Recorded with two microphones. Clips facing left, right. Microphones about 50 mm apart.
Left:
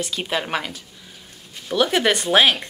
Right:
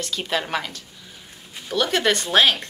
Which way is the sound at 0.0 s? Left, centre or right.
Centre.